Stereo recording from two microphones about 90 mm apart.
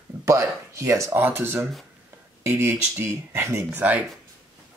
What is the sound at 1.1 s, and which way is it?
Speech, 20° right (ahead or behind).